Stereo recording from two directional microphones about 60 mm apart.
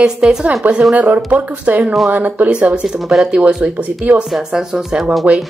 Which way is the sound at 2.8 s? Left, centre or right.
Centre.